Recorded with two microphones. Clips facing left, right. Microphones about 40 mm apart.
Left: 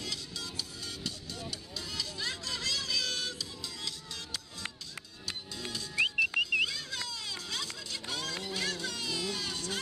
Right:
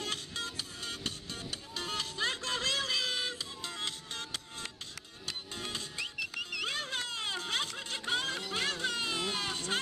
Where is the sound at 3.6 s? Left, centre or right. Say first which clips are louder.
Right 2 dB; right.